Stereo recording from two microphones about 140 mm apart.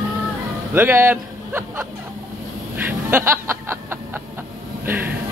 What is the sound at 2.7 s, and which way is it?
Music, 15° right (ahead or behind).